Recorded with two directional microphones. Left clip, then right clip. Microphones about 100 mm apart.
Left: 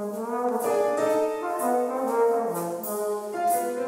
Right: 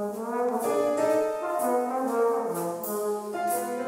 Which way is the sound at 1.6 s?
20° left (ahead or behind).